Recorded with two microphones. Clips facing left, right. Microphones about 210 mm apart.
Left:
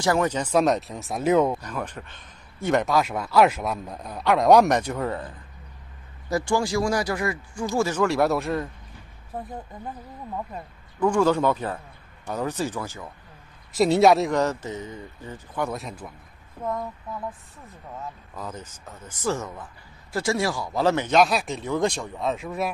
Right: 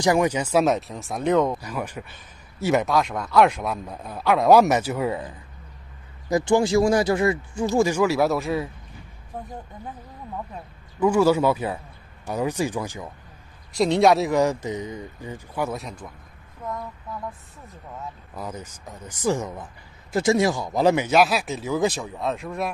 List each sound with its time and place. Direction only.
0.0 s speech: 15° right (ahead or behind); by 1.6 s 10° left (ahead or behind)
1.6 s speech: 10° right (ahead or behind); by 7.6 s 25° right (ahead or behind)
7.6 s speech: 15° right (ahead or behind)
8.0 s speech: centre (ahead or behind)
10.5 s speech: 5° right (ahead or behind)
13.7 s speech: 5° left (ahead or behind)
14.4 s speech: 15° right (ahead or behind); by 16.1 s 5° left (ahead or behind)
18.3 s speech: 10° right (ahead or behind)